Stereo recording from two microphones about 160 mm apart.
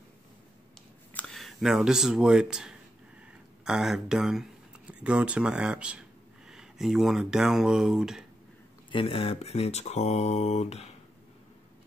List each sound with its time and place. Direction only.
1.1 s speech: centre (ahead or behind)
3.2 s a sound: 5° right (ahead or behind)
5.0 s speech: 5° right (ahead or behind)
8.9 s speech: 35° left (ahead or behind)